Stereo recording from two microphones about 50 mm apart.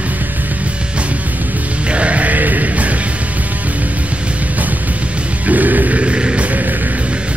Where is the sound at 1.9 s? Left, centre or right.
Right.